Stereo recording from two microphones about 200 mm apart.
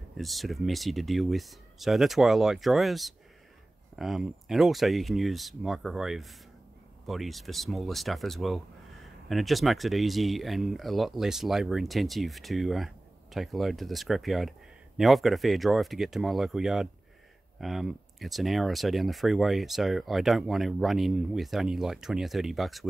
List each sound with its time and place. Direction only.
0.2 s speech: centre (ahead or behind)